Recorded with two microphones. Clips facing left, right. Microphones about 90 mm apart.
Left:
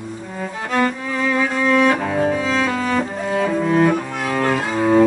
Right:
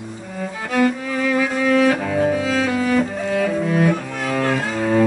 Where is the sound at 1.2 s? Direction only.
35° left (ahead or behind).